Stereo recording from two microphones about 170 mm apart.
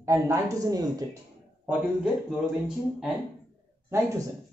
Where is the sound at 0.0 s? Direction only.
15° right (ahead or behind).